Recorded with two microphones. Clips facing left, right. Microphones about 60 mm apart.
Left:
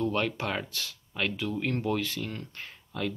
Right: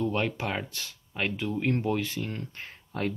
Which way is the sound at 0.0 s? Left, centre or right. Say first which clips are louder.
Even; centre.